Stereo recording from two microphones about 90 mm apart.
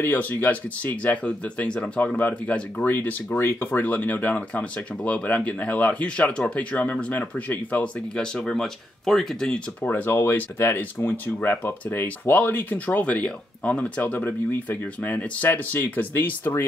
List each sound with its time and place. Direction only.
0.0 s speech: 20° left (ahead or behind)
9.8 s speech: 20° left (ahead or behind)